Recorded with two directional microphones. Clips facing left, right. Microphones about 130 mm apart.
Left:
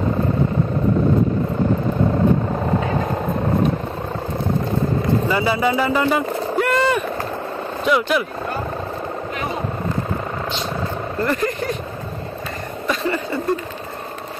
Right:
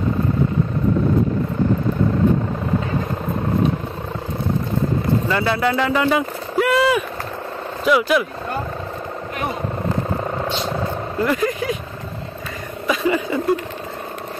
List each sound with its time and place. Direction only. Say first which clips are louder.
5.3 s speech: even; 10° left (ahead or behind)
11.1 s vehicle: right 1 dB; 5° right (ahead or behind)
12.8 s a sound: right 3 dB; 5° right (ahead or behind)